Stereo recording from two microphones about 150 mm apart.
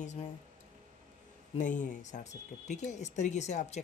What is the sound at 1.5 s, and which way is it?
Speech, 60° left (ahead or behind).